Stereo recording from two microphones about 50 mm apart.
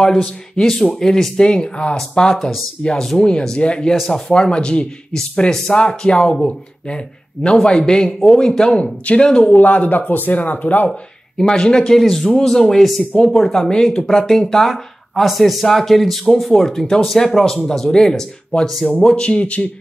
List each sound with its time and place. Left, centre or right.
0.6 s speech: centre
9.5 s speech: left
10.9 s speech: centre
13.1 s speech: centre